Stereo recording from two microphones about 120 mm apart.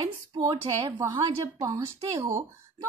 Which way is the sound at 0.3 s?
40° right (ahead or behind).